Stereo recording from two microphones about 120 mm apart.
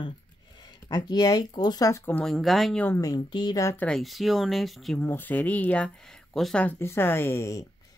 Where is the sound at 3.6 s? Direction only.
20° left (ahead or behind).